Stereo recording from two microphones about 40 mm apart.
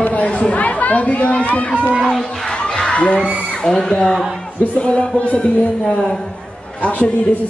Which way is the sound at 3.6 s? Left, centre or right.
Centre.